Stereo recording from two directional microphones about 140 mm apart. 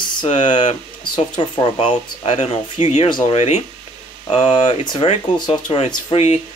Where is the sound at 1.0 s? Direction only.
35° left (ahead or behind).